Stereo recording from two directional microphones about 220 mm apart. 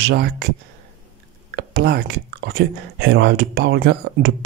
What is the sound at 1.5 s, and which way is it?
Speech, 45° right (ahead or behind).